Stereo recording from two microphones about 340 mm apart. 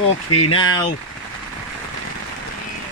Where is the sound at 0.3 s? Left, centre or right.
Left.